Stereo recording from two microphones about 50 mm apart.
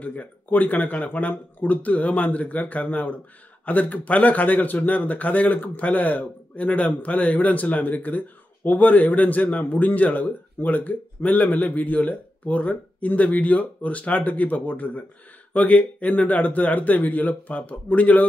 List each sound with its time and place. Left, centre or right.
0.0 s speech: left